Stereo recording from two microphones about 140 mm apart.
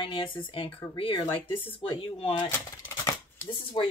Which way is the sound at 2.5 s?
25° left (ahead or behind).